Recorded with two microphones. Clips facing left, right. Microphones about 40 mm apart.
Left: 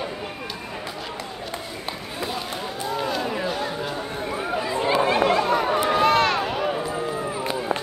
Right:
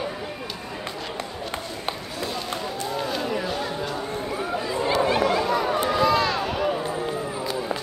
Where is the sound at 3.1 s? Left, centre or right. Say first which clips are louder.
Left 1 dB; centre.